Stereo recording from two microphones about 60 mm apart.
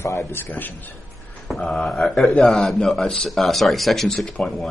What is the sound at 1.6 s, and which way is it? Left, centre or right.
Speech, centre.